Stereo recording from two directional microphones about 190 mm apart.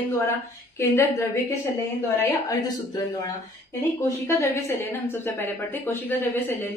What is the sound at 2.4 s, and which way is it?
A woman's voice, 20° left (ahead or behind).